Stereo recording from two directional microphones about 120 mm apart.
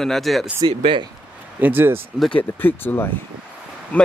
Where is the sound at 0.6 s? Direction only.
45° right (ahead or behind).